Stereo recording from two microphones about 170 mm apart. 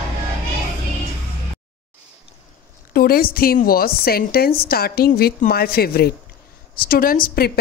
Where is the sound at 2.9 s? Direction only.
60° left (ahead or behind).